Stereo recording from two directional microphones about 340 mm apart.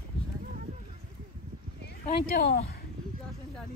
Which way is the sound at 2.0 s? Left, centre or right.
Left.